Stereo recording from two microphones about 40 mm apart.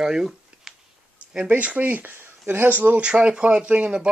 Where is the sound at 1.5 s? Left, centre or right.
Right.